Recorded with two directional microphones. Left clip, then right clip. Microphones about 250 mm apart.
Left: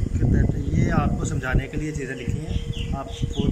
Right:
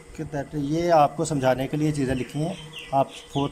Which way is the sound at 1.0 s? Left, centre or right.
Right.